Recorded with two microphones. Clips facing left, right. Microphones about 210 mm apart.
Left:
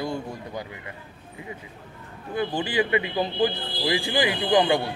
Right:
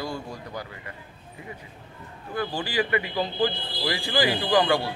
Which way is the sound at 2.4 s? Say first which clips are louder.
Left 2 dB; 20° left (ahead or behind).